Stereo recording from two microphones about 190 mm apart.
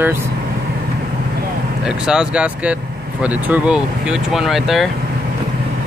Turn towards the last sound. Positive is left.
turn(degrees=0)  # may be behind; listen again after turning